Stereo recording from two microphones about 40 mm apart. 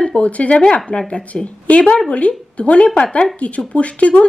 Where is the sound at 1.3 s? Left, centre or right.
Left.